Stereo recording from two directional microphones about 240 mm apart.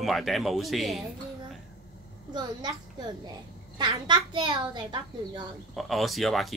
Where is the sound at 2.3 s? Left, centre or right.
Centre.